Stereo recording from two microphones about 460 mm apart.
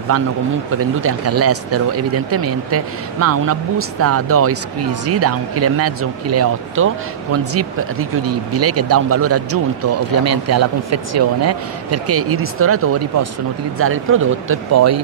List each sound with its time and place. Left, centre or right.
0.7 s speech: right